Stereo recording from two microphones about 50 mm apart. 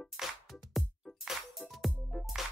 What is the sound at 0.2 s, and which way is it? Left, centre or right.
Music, centre.